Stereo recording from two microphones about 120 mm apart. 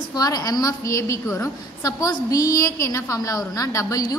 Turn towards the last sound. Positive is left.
turn(degrees=30)  # may be behind; listen again after turning